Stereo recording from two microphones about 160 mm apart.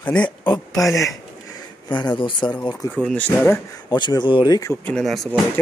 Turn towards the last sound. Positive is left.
turn(degrees=0)  # may be behind; listen again after turning